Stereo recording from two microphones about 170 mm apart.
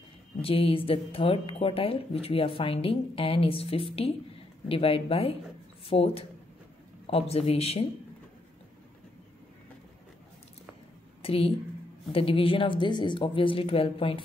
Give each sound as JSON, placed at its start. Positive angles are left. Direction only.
{"t": 0.4, "sound": "speech", "side_deg": 35}
{"t": 11.2, "sound": "speech", "side_deg": 35}